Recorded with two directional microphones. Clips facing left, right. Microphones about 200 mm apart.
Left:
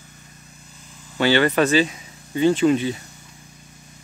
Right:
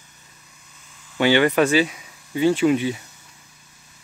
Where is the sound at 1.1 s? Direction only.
15° right (ahead or behind).